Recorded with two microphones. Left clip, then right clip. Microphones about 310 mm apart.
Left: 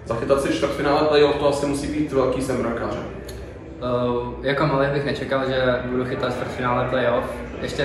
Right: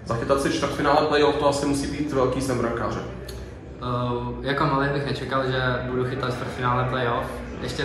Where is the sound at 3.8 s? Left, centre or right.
Centre.